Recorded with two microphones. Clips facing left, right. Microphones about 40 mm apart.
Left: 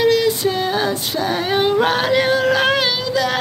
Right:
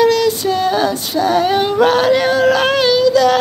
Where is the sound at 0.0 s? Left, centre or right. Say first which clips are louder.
Right 3 dB; left.